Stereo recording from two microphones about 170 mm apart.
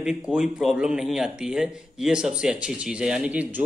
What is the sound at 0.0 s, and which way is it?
Speech, 5° right (ahead or behind).